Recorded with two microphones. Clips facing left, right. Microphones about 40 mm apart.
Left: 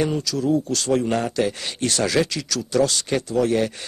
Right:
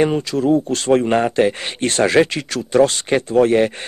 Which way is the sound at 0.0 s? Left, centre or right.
Right.